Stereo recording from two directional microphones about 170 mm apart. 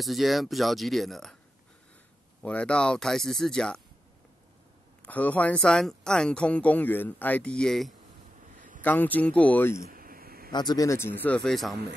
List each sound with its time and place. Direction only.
0.0 s speech: centre (ahead or behind)
2.4 s speech: 5° left (ahead or behind)
5.0 s speech: 10° left (ahead or behind)
9.8 s a sound: 60° right (ahead or behind)
10.5 s speech: 25° left (ahead or behind)
11.4 s speech: centre (ahead or behind)